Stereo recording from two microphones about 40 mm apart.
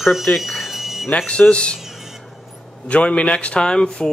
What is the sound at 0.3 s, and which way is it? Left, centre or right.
Speech, left.